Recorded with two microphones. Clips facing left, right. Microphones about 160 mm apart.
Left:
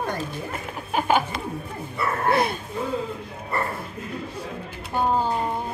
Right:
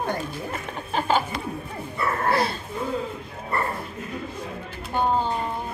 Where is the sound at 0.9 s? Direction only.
15° left (ahead or behind).